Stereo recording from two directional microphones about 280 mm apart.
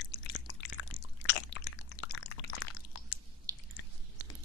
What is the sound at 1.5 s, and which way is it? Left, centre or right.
Drip, left.